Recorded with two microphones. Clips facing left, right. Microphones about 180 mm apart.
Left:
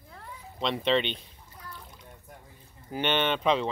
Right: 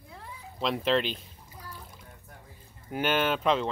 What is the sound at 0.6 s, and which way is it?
Speech, centre (ahead or behind).